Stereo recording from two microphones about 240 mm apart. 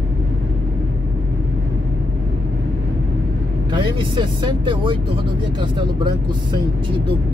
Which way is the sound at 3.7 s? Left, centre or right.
Centre.